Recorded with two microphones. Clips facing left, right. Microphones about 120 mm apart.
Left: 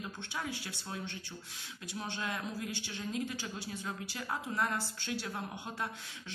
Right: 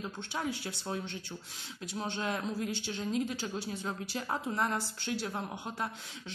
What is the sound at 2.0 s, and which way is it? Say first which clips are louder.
Speech: right 4 dB; 25° right (ahead or behind).